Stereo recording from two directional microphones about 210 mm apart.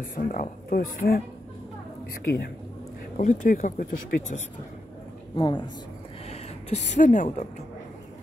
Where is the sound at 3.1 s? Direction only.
35° left (ahead or behind).